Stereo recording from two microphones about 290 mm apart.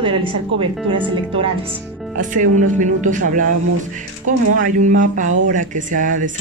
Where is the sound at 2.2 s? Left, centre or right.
Right.